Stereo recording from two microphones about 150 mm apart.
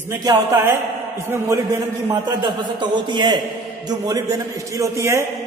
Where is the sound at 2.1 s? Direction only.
30° right (ahead or behind).